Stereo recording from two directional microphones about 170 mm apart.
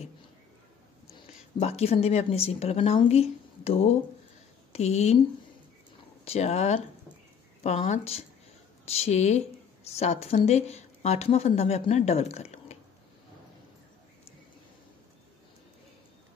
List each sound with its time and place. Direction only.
1.6 s speech: 40° left (ahead or behind)
6.2 s speech: 40° left (ahead or behind)